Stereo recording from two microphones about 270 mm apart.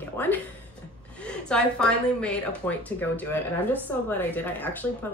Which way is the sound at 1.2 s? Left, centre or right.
Centre.